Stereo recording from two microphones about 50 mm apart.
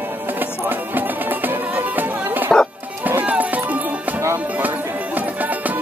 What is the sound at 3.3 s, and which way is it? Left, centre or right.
Run, right.